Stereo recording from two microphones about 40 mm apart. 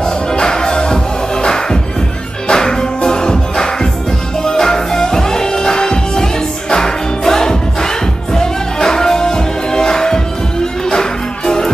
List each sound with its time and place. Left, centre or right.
0.0 s music: centre